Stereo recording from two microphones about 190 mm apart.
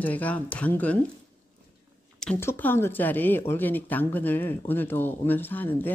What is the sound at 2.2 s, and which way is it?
Speech, 10° left (ahead or behind).